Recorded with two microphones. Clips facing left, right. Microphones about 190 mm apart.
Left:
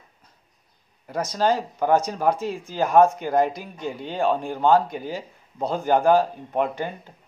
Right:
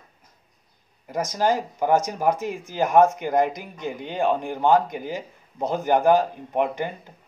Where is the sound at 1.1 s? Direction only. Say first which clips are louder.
Even; 15° right (ahead or behind).